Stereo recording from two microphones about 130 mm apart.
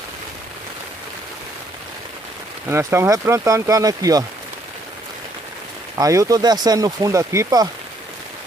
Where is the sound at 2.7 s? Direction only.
20° right (ahead or behind).